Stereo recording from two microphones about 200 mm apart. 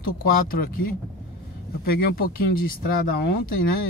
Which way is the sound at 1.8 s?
50° left (ahead or behind).